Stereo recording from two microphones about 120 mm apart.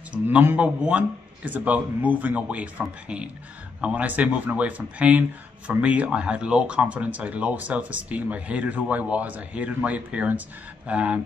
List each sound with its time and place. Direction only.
0.1 s speech: 15° right (ahead or behind)